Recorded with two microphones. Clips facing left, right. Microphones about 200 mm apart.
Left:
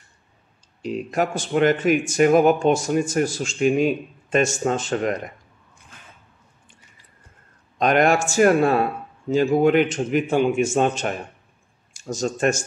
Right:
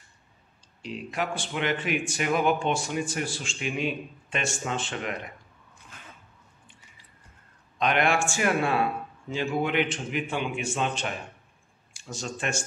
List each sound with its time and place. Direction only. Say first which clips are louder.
0.8 s speech: left 8 dB; 45° left (ahead or behind)
7.8 s speech: left 7 dB; 45° left (ahead or behind)